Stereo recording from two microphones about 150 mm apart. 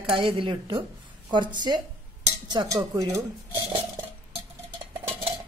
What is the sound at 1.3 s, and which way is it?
Cowbell, 30° right (ahead or behind).